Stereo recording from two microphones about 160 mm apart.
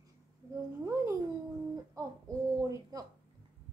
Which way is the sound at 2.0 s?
20° right (ahead or behind).